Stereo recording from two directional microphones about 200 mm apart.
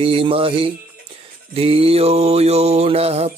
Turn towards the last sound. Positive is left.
turn(degrees=-30)  # may be behind; listen again after turning